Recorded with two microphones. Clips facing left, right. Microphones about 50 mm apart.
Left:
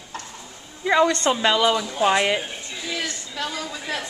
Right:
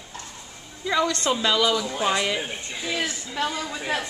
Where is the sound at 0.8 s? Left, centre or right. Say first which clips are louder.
Left 5 dB; left.